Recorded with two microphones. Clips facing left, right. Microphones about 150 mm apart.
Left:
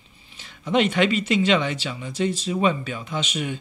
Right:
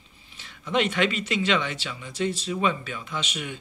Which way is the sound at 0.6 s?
20° left (ahead or behind).